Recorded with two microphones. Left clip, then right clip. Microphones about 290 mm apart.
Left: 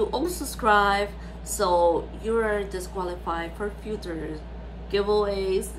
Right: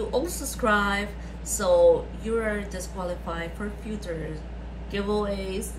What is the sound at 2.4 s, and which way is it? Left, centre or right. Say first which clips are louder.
A woman's voice: left 3 dB; centre.